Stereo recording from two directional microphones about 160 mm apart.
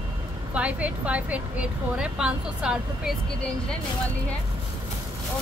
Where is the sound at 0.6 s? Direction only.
10° right (ahead or behind).